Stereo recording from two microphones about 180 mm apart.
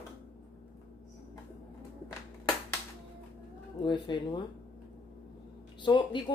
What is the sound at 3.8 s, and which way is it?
Speech, 25° left (ahead or behind).